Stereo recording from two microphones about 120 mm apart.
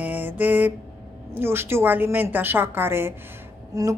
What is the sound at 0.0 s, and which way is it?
Mantra, 15° right (ahead or behind).